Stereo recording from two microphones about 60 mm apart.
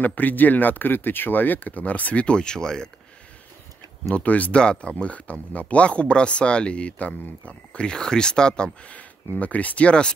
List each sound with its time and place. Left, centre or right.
0.0 s speech: left; by 2.9 s centre
4.1 s speech: left